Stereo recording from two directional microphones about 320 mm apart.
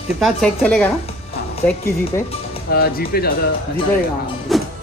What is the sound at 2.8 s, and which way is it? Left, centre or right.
Speech, left.